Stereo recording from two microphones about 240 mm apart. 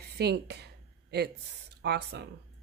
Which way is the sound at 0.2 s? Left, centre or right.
Right.